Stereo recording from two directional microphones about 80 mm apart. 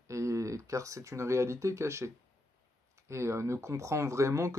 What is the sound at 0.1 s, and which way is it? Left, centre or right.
Speech, right.